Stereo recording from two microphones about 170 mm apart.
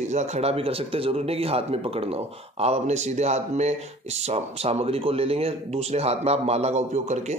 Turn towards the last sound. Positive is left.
turn(degrees=-40)  # may be behind; listen again after turning